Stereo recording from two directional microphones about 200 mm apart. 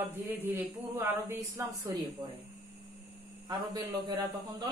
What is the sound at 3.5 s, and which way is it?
Speech, 20° right (ahead or behind).